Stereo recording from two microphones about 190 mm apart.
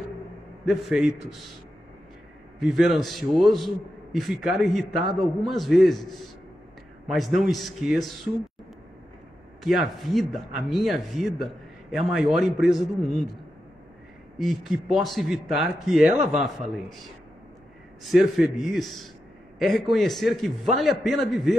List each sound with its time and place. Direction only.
0.7 s a man's voice: centre (ahead or behind)
2.6 s a man's voice: centre (ahead or behind)
9.6 s a man's voice: centre (ahead or behind)
14.4 s a man's voice: centre (ahead or behind)